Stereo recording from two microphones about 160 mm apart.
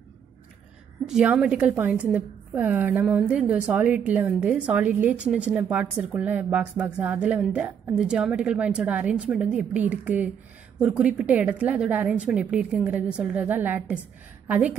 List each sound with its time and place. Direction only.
1.0 s a woman's voice: 5° right (ahead or behind)